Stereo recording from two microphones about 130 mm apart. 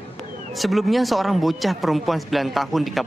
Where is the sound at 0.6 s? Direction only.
Centre (ahead or behind).